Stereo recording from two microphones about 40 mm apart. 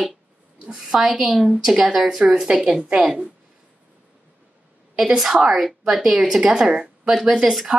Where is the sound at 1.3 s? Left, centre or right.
Centre.